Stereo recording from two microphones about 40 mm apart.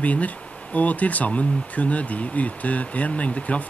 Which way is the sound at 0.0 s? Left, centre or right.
Left.